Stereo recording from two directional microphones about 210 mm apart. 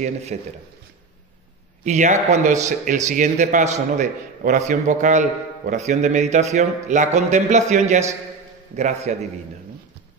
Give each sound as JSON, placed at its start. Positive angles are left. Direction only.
{"t": 0.0, "sound": "a man's voice", "side_deg": -30}
{"t": 1.9, "sound": "a man's voice", "side_deg": -35}